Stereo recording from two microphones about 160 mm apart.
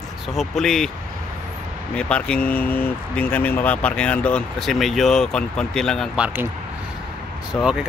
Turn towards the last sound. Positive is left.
turn(degrees=0)  # may be behind; listen again after turning